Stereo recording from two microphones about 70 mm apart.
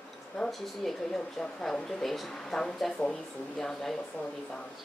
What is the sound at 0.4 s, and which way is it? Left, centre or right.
Speech, centre.